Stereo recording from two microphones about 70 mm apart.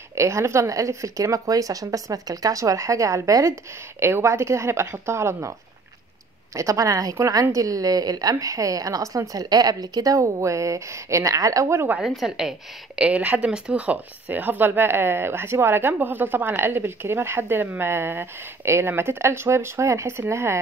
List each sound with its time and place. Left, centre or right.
0.1 s speech: right
4.0 s a woman's voice: right
6.5 s a woman's voice: right
12.1 s a woman's voice: centre; by 20.5 s right